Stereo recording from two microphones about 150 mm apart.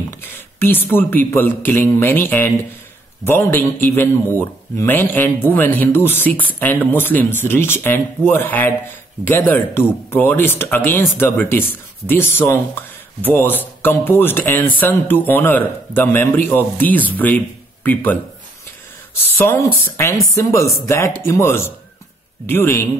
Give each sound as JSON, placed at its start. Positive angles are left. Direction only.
{"t": 0.2, "sound": "speech", "side_deg": 15}